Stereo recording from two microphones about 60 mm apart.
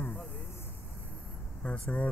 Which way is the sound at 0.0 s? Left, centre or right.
Left.